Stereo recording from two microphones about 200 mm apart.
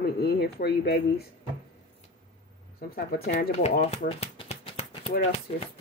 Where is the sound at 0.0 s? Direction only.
50° left (ahead or behind).